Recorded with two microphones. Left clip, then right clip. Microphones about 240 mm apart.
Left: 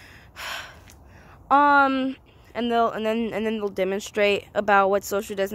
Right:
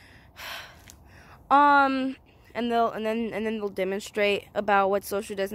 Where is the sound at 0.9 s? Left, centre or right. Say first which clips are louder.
Left 1 dB; centre.